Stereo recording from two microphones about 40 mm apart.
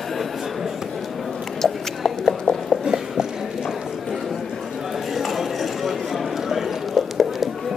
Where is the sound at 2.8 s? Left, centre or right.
Centre.